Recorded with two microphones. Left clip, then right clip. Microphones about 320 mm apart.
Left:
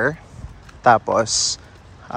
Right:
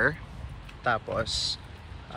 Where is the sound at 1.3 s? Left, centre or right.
Left.